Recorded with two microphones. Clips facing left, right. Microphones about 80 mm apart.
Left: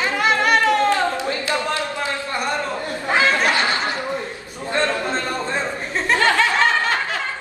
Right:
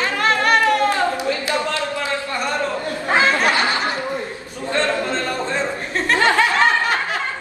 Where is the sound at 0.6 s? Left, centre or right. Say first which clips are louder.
Even; centre.